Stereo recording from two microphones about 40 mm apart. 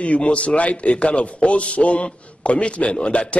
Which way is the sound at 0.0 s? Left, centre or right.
Left.